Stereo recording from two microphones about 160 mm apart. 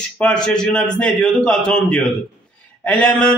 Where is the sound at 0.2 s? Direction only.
5° left (ahead or behind).